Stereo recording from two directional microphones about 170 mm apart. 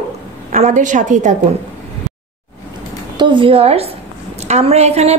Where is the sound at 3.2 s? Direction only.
30° right (ahead or behind).